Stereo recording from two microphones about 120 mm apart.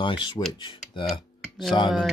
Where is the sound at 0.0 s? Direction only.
40° left (ahead or behind).